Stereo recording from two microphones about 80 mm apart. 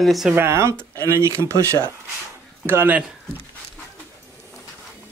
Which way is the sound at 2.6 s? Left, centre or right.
Right.